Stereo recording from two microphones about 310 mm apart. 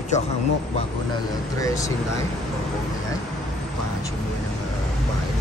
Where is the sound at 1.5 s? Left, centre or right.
Centre.